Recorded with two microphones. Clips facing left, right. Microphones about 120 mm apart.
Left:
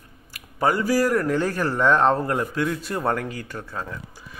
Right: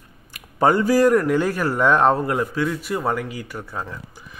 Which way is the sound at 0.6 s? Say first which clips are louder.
Right 4 dB; 25° right (ahead or behind).